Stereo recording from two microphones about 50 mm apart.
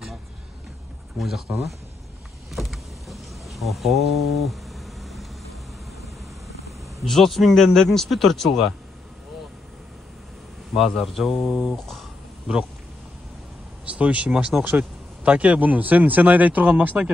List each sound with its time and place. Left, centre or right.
1.1 s speech: centre
2.5 s vehicle: centre
7.1 s speech: centre
10.7 s speech: centre
13.8 s speech: right
14.6 s speech: right
15.2 s speech: right